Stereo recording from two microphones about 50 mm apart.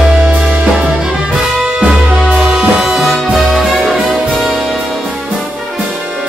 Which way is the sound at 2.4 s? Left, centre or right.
Centre.